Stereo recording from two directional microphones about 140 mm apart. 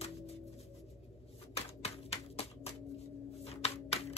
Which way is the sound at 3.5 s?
50° left (ahead or behind).